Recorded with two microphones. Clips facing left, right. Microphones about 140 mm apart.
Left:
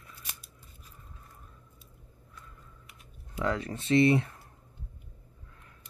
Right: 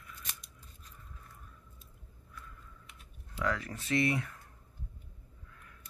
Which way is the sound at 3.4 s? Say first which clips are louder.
Left 4 dB; 25° left (ahead or behind).